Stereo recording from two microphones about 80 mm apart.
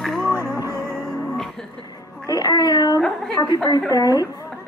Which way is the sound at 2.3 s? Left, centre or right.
Left.